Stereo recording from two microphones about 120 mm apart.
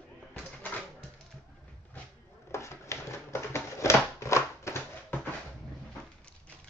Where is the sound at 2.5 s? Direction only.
25° left (ahead or behind).